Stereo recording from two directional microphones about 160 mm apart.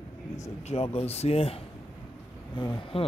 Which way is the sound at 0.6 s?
40° left (ahead or behind).